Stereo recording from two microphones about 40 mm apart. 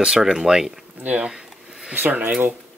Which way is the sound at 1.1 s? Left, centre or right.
Right.